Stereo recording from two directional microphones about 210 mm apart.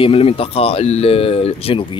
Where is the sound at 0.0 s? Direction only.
25° left (ahead or behind).